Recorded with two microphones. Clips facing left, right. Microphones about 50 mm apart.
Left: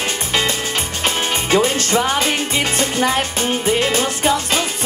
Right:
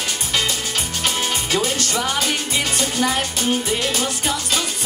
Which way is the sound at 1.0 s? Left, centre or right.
Left.